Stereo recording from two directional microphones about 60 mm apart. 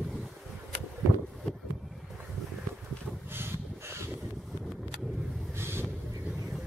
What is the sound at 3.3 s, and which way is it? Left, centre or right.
Snort, right.